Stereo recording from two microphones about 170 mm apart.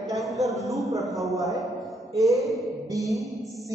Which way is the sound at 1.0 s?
Centre (ahead or behind).